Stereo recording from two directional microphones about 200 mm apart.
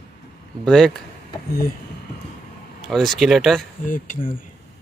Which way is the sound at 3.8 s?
40° left (ahead or behind).